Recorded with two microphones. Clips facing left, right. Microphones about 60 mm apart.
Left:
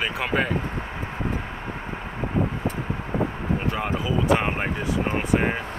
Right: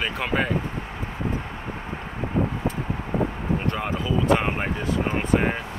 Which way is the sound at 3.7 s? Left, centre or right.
Centre.